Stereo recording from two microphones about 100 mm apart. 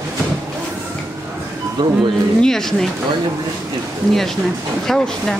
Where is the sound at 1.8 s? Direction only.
45° right (ahead or behind).